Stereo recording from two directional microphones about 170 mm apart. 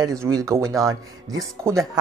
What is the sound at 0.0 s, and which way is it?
Speech, 20° right (ahead or behind).